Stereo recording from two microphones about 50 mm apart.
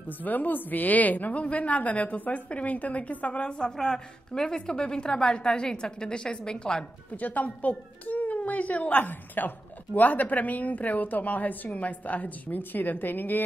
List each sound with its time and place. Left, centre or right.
0.2 s a woman's voice: left; by 6.8 s centre
7.2 s a woman's voice: left